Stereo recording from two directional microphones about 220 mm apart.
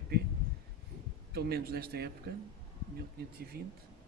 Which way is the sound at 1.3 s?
45° right (ahead or behind).